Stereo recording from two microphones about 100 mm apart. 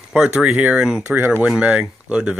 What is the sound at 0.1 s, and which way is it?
Speech, 10° right (ahead or behind).